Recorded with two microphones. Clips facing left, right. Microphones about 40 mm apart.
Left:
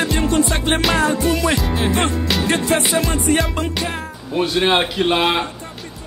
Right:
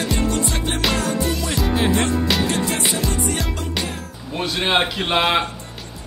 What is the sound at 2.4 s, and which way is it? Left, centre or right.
Music, left.